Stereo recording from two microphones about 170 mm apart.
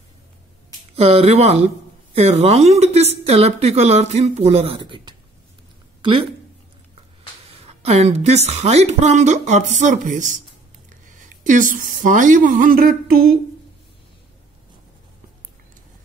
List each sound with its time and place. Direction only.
0.9 s a woman's voice: 35° right (ahead or behind)
7.6 s a woman's voice: 40° right (ahead or behind); by 13.4 s 60° right (ahead or behind)